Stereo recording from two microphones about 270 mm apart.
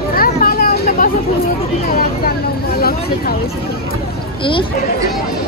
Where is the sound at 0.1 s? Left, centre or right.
Left.